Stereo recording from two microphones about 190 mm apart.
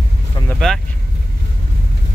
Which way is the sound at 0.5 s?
Centre (ahead or behind).